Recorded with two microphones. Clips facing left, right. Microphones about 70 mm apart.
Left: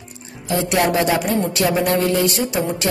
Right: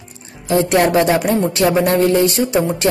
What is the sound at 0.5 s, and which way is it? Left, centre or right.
Speech, right.